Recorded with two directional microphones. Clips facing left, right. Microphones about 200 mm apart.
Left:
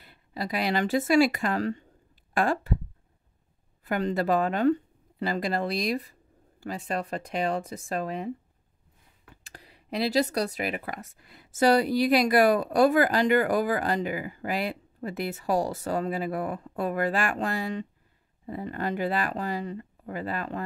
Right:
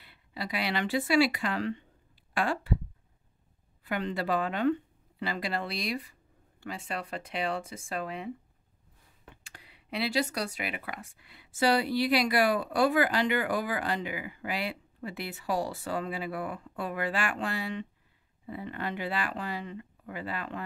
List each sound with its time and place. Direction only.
0.0 s speech: 45° left (ahead or behind)
3.8 s a woman's voice: 45° left (ahead or behind)
9.3 s speech: 40° left (ahead or behind)